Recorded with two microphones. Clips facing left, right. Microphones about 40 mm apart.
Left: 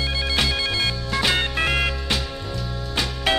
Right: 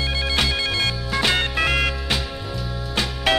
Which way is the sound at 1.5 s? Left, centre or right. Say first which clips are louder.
Right 1 dB; right.